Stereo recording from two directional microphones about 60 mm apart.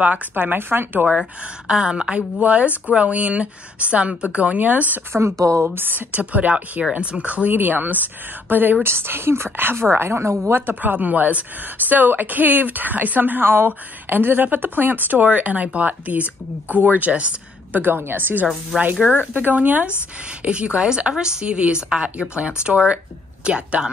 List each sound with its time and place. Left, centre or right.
0.0 s a woman's voice: right
1.0 s a woman's voice: centre
5.4 s speech: right
5.8 s a woman's voice: right
10.5 s speech: right
17.8 s a woman's voice: right
18.7 s speech: centre
19.3 s a woman's voice: right